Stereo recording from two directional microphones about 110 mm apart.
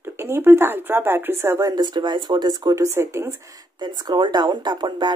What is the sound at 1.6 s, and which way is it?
Speech, 40° right (ahead or behind).